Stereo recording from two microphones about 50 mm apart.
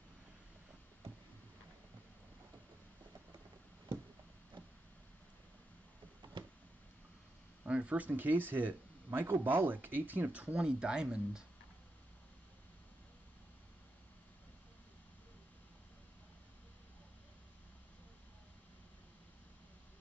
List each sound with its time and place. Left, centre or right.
7.6 s speech: right
10.3 s speech: right